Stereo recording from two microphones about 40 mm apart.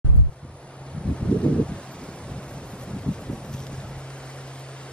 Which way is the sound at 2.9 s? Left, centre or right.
Left.